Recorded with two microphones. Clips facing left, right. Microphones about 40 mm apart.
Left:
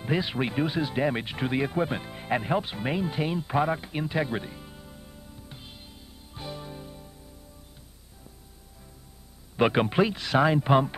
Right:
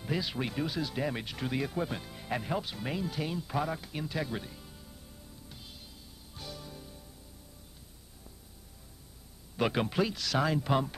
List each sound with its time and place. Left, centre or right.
0.0 s speech: left
9.6 s speech: left